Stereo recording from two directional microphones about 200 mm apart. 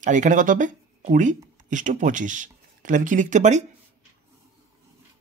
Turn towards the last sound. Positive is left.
turn(degrees=-35)  # may be behind; listen again after turning